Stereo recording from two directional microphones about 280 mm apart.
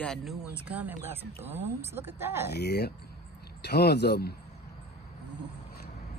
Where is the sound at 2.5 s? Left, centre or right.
Left.